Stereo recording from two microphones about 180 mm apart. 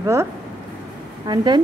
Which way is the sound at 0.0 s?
15° right (ahead or behind).